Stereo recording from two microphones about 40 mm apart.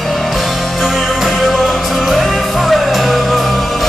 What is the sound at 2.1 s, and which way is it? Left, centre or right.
Music, centre.